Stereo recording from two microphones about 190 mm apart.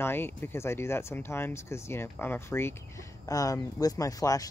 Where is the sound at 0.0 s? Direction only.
10° left (ahead or behind).